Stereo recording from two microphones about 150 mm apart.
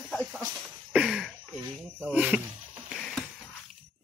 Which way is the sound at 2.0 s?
10° right (ahead or behind).